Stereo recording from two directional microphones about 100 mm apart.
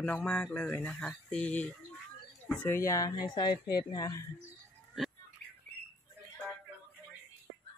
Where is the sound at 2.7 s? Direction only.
30° left (ahead or behind).